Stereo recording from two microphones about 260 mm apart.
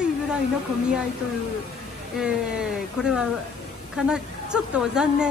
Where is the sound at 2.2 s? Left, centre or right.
Centre.